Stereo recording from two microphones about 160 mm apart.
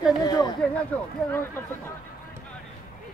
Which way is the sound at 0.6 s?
5° left (ahead or behind).